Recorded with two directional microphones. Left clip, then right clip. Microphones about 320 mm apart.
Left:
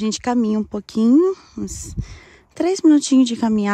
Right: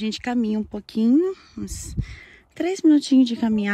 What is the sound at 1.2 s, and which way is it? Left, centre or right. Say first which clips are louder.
Speech: left 6 dB; centre.